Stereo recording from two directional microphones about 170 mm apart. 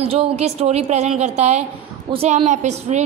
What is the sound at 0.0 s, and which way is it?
A woman's voice, 35° right (ahead or behind).